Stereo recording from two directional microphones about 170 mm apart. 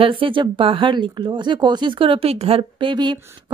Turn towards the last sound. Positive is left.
turn(degrees=-25)  # may be behind; listen again after turning